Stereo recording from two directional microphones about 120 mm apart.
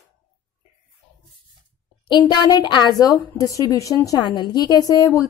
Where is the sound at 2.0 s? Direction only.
35° left (ahead or behind).